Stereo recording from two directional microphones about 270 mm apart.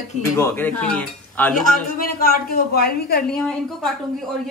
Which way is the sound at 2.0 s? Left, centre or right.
Left.